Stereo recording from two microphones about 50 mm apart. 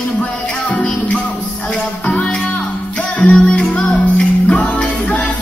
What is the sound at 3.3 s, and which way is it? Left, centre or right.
Music, centre.